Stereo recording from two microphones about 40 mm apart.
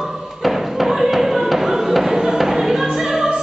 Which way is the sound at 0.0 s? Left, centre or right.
Centre.